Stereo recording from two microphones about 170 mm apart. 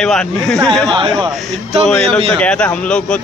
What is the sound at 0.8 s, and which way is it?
Speech, 30° right (ahead or behind).